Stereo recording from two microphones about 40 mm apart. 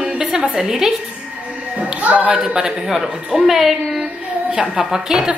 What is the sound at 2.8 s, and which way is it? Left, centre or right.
A woman's voice, centre.